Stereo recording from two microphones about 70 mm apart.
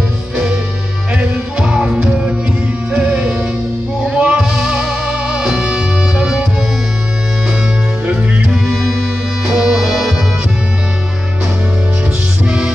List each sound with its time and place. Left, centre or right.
1.6 s music: centre
8.1 s music: centre
12.4 s music: centre